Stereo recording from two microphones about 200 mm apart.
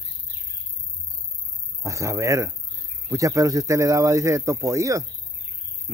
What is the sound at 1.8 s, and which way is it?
Speech, 15° right (ahead or behind).